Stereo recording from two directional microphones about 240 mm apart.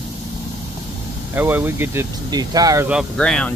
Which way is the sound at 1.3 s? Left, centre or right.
Centre.